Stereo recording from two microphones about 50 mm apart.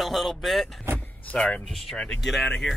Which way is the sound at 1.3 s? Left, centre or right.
Centre.